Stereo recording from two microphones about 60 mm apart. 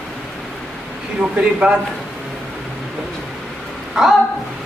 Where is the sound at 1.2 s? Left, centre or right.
Centre.